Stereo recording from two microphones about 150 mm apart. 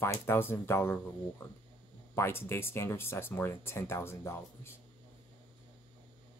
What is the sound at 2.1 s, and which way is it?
Speech, 15° left (ahead or behind).